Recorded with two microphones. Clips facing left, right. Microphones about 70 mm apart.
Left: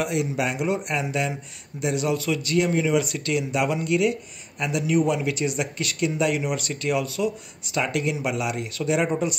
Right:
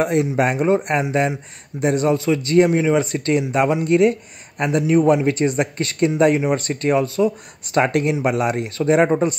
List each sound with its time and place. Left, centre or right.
0.0 s speech: right